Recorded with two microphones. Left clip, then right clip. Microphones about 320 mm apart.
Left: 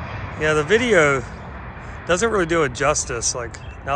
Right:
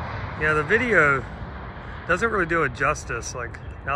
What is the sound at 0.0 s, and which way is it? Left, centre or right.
Speech, centre.